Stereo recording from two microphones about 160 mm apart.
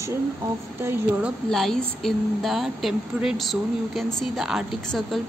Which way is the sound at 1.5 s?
5° left (ahead or behind).